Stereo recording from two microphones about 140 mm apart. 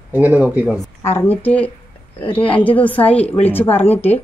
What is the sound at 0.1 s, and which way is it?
Speech, 10° right (ahead or behind).